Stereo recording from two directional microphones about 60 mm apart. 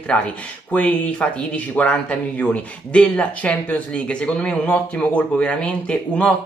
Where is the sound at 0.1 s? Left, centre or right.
Centre.